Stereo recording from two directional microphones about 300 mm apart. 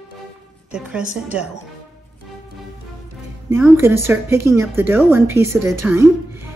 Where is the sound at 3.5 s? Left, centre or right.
Centre.